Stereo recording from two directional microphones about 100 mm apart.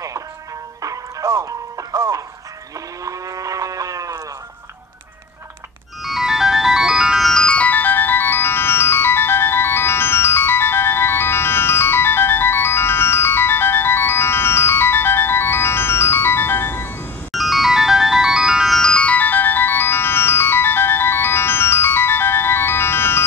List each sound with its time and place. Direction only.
0.8 s music: 30° right (ahead or behind)
3.1 s livestock: 35° right (ahead or behind)
6.0 s music: 5° right (ahead or behind); by 16.9 s 25° left (ahead or behind)
17.3 s ringtone: centre (ahead or behind)
18.8 s ringtone: 10° left (ahead or behind)